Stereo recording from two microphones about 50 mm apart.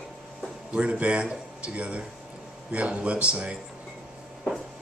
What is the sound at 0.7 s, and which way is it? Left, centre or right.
Speech, right.